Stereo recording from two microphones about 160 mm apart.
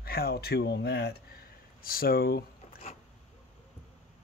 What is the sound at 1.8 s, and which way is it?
Speech, 65° left (ahead or behind).